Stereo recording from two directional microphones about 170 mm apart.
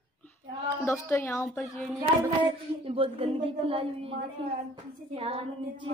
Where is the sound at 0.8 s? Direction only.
15° left (ahead or behind).